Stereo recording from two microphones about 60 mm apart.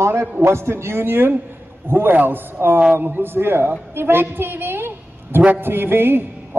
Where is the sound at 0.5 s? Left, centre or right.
Right.